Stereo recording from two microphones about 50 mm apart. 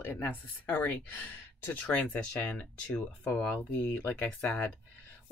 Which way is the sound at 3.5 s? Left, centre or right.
Left.